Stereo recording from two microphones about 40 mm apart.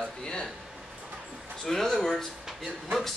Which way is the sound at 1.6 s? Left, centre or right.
Centre.